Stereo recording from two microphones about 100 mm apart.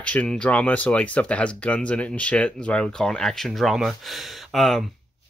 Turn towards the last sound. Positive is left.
turn(degrees=0)  # may be behind; listen again after turning